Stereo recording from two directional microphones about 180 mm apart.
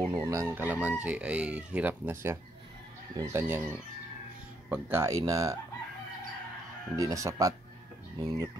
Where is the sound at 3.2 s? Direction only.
15° right (ahead or behind).